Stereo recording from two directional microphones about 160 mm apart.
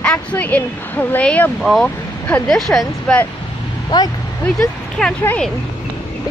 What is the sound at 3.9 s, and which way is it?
Speech, 25° left (ahead or behind).